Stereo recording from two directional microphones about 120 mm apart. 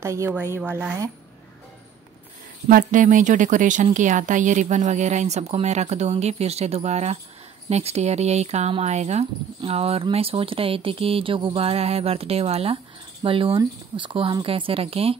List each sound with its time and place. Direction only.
0.0 s speech: 25° right (ahead or behind)
2.9 s speech: 90° right; by 9.2 s 70° right (ahead or behind)
9.6 s speech: 55° right (ahead or behind)